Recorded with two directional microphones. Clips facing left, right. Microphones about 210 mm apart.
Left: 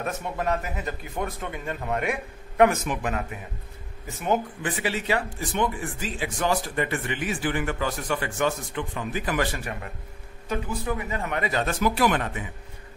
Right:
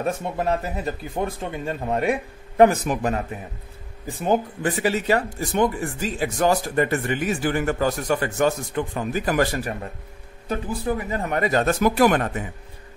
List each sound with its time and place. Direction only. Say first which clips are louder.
0.0 s speech: right 4 dB; 30° right (ahead or behind); by 12.4 s 45° right (ahead or behind)